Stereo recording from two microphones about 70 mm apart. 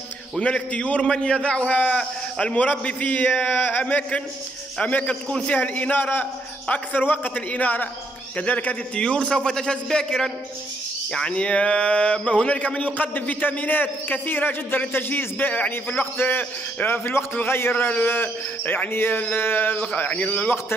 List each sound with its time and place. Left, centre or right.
0.4 s a man's voice: centre